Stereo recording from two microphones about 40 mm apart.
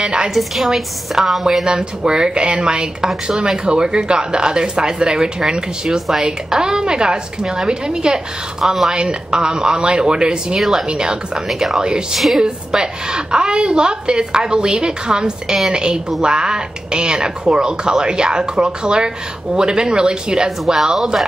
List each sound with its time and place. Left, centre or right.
0.0 s a woman's voice: right
0.3 s a woman's voice: centre; by 10.6 s right
10.6 s a woman's voice: centre
10.9 s a woman's voice: centre
11.4 s a woman's voice: centre
12.4 s a woman's voice: centre